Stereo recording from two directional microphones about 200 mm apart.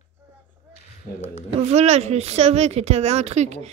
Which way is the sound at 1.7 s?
35° right (ahead or behind).